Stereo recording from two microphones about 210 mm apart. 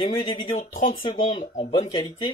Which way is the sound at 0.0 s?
25° left (ahead or behind).